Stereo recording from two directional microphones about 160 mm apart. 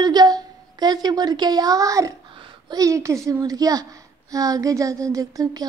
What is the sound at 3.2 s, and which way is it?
A woman's voice, 20° right (ahead or behind).